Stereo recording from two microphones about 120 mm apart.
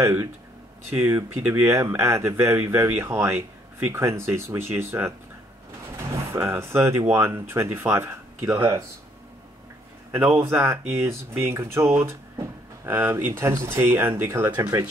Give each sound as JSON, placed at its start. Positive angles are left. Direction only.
{"t": 0.0, "sound": "speech", "side_deg": -15}
{"t": 6.3, "sound": "speech", "side_deg": -20}
{"t": 10.1, "sound": "speech", "side_deg": -20}